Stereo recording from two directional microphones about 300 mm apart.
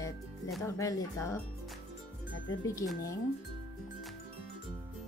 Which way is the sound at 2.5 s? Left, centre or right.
Centre.